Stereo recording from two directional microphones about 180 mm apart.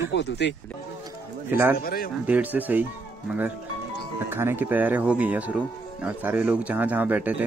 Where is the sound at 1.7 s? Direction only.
55° left (ahead or behind).